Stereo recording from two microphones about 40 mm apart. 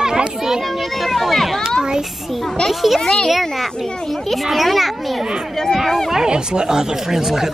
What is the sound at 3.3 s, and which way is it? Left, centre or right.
A child's voice, centre.